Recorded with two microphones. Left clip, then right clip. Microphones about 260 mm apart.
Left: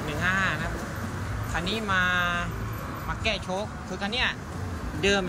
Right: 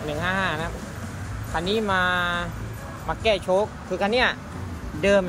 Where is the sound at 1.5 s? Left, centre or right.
Centre.